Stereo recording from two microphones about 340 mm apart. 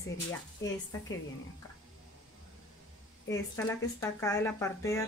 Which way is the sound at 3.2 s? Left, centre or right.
Centre.